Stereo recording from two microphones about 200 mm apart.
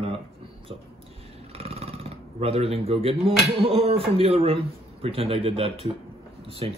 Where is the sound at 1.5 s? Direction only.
30° right (ahead or behind).